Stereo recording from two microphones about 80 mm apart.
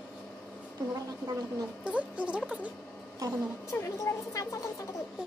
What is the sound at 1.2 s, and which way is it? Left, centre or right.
Speech, right.